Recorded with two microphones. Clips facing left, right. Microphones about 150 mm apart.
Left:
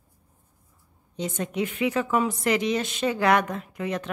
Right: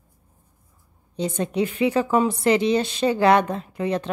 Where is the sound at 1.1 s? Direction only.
35° right (ahead or behind).